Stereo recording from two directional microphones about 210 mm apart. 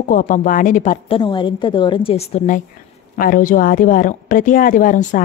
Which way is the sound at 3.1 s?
40° left (ahead or behind).